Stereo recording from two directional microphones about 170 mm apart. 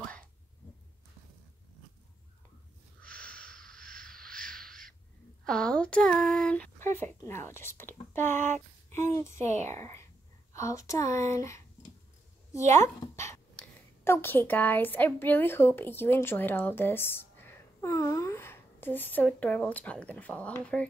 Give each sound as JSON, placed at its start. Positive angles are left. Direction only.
{"t": 3.0, "sound": "a sound", "side_deg": 5}
{"t": 3.6, "sound": "a sound", "side_deg": -60}
{"t": 4.1, "sound": "bird", "side_deg": -60}
{"t": 5.4, "sound": "speech", "side_deg": 5}
{"t": 9.5, "sound": "speech", "side_deg": -45}
{"t": 9.8, "sound": "speech", "side_deg": 15}
{"t": 12.7, "sound": "speech", "side_deg": 15}